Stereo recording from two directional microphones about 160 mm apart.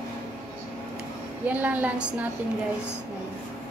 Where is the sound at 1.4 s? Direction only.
10° right (ahead or behind).